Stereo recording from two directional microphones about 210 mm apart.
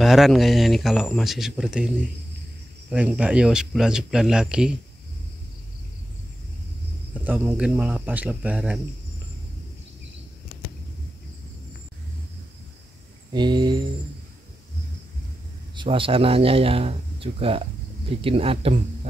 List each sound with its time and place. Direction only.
0.0 s speech: centre (ahead or behind)
2.9 s speech: 5° right (ahead or behind)
7.2 s speech: 10° right (ahead or behind)
13.3 s speech: 20° right (ahead or behind)
15.7 s speech: 25° right (ahead or behind)